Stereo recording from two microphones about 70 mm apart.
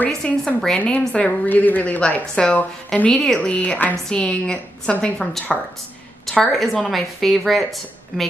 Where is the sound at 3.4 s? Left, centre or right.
Centre.